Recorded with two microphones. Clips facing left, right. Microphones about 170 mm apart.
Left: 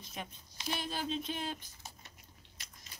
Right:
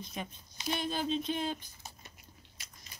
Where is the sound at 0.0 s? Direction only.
5° left (ahead or behind).